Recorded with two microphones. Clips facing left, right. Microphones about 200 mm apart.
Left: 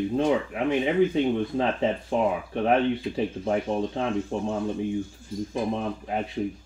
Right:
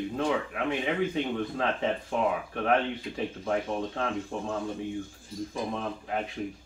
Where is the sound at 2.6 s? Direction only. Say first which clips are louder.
Left 4 dB; 25° left (ahead or behind).